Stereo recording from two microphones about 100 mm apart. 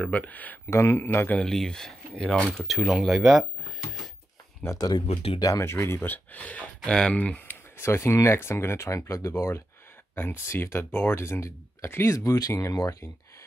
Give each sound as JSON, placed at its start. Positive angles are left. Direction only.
{"t": 0.0, "sound": "speech", "side_deg": 15}
{"t": 0.7, "sound": "speech", "side_deg": 25}
{"t": 1.4, "sound": "speech", "side_deg": 5}
{"t": 4.7, "sound": "speech", "side_deg": 40}
{"t": 5.0, "sound": "speech", "side_deg": 80}
{"t": 5.4, "sound": "speech", "side_deg": 35}
{"t": 5.7, "sound": "speech", "side_deg": 25}